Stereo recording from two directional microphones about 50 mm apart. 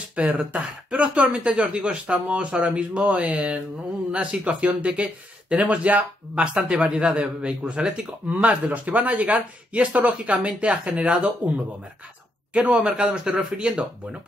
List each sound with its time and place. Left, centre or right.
0.1 s speech: right
12.5 s speech: right